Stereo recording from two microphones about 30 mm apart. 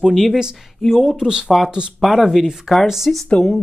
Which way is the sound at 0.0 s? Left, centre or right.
Centre.